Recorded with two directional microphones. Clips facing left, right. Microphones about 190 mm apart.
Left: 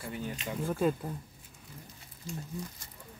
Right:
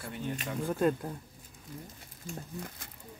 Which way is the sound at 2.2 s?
60° right (ahead or behind).